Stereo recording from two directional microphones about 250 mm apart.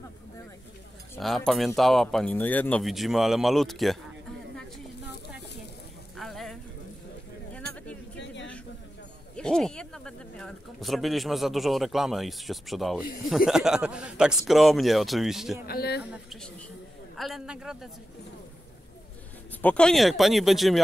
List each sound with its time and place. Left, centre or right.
1.1 s speech: centre
6.1 s a sound: centre
9.4 s speech: centre
15.6 s speech: left
16.0 s speech: centre
19.6 s speech: centre